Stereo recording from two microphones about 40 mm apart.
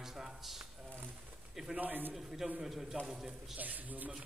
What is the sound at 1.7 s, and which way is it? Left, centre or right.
Speech, right.